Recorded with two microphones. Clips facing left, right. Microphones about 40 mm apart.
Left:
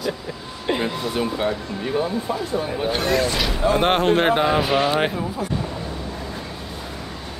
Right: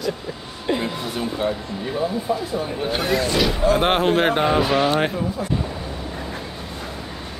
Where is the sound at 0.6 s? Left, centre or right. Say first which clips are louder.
Left 1 dB; left.